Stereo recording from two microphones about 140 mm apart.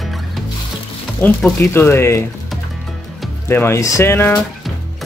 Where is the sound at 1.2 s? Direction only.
10° left (ahead or behind).